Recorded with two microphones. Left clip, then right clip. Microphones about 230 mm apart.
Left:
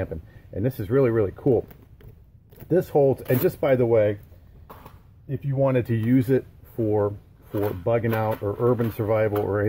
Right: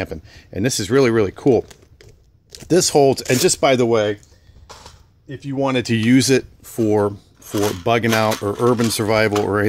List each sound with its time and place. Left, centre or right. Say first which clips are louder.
0.0 s speech: right 4 dB; right
2.7 s speech: right 6 dB; right
5.5 s speech: right 3 dB; right